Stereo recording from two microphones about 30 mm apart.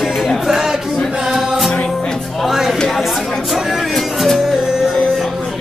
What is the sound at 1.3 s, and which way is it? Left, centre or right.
Music, centre.